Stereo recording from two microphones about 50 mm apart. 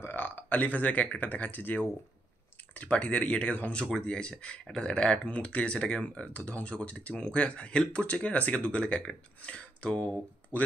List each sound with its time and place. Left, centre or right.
0.0 s speech: left
2.7 s speech: left